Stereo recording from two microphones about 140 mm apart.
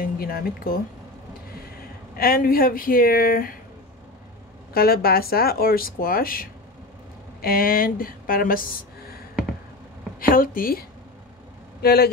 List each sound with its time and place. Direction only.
0.0 s speech: 90° left
4.7 s speech: 90° left
10.2 s speech: 90° left